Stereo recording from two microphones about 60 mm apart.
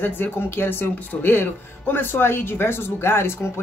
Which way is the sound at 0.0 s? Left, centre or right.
Left.